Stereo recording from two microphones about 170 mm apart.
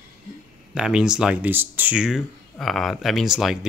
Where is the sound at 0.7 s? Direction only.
5° right (ahead or behind).